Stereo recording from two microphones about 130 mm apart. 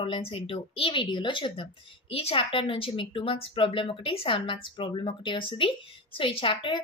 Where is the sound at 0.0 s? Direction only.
45° left (ahead or behind).